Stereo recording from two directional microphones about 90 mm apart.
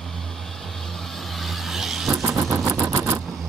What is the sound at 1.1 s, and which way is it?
Vehicle, centre (ahead or behind).